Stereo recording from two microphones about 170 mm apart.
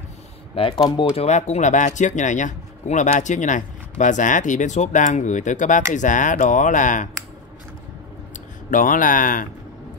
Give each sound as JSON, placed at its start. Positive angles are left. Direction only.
{"t": 0.6, "sound": "speech", "side_deg": 30}
{"t": 1.1, "sound": "speech", "side_deg": 40}
{"t": 8.3, "sound": "speech", "side_deg": 50}